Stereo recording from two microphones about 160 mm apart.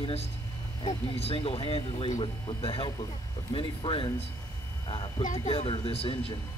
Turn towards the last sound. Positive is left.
turn(degrees=35)  # may be behind; listen again after turning